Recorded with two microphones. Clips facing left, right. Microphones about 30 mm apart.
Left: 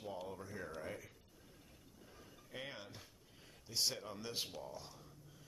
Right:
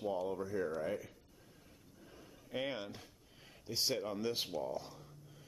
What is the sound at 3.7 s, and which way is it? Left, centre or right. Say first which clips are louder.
Speech: right 4 dB; centre.